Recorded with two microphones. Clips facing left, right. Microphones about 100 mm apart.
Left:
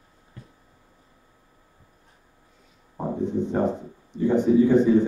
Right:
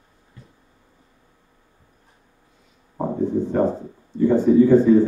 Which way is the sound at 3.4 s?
20° left (ahead or behind).